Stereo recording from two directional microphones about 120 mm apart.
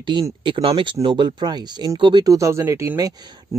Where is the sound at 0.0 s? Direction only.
45° right (ahead or behind).